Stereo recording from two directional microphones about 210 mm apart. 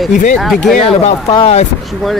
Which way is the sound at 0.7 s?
25° left (ahead or behind).